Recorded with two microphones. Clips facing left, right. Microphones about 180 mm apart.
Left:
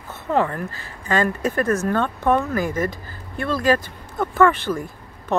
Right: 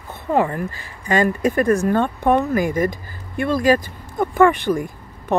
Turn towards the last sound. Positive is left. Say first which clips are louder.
# right 2 dB
turn(degrees=-15)  # may be behind; listen again after turning